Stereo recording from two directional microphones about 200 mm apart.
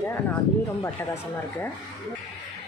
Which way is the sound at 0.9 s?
10° left (ahead or behind).